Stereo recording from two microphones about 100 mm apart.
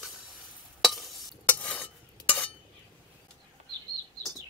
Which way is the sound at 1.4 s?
15° left (ahead or behind).